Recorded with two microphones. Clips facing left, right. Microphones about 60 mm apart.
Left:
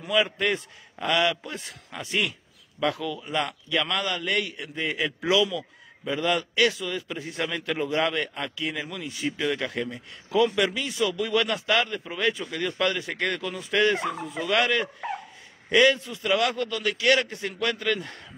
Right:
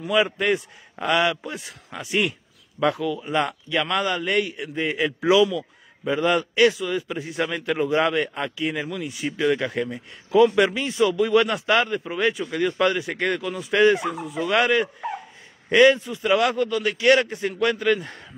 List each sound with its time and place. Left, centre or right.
0.1 s a man's voice: centre
1.4 s a man's voice: centre
14.1 s speech: centre
14.5 s speech: right